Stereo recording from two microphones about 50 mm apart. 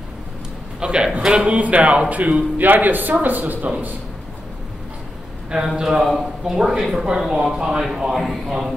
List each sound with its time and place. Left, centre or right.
0.7 s speech: centre
1.3 s a man's voice: right
3.6 s a man's voice: right
5.8 s a man's voice: centre